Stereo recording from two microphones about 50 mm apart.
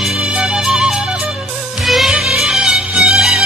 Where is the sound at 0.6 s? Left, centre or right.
Centre.